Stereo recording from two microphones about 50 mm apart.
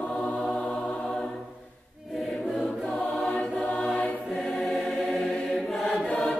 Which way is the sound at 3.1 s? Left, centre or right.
Centre.